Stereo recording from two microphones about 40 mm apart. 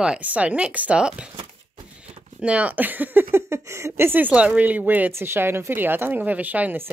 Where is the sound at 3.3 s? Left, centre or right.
Right.